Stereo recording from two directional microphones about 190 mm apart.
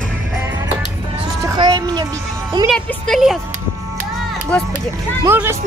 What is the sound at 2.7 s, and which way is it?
Speech, centre (ahead or behind).